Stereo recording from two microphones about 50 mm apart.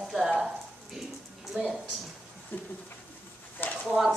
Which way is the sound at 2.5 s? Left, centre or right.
Left.